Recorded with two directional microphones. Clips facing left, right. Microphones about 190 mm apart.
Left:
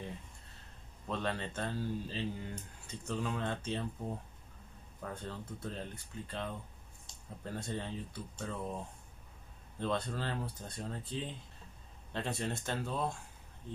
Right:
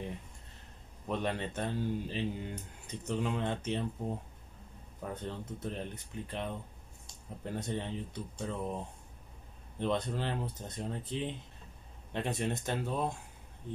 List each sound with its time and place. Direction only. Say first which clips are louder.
1.0 s speech: right 3 dB; 15° right (ahead or behind)
5.0 s speech: right 3 dB; 20° right (ahead or behind)
9.8 s speech: right 3 dB; 20° right (ahead or behind)